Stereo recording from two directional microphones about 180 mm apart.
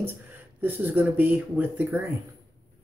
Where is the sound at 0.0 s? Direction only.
10° right (ahead or behind).